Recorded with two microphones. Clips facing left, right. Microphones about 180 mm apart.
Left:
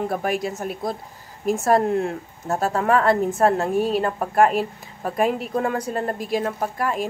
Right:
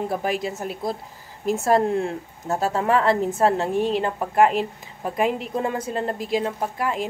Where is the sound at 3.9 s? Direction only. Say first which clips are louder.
Left 1 dB; 20° right (ahead or behind).